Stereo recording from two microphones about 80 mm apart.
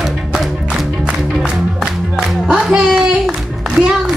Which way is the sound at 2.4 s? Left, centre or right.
Centre.